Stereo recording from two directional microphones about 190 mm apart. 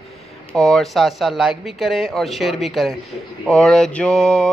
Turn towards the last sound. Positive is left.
turn(degrees=5)  # may be behind; listen again after turning